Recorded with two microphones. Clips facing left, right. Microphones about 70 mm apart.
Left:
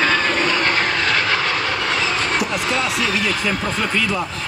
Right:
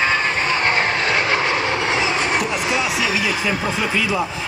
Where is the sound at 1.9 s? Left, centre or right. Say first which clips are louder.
Right 1 dB; centre.